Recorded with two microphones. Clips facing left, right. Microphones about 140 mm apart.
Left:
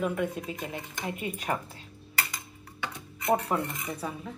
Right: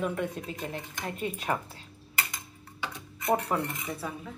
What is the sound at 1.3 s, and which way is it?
Speech, 35° right (ahead or behind).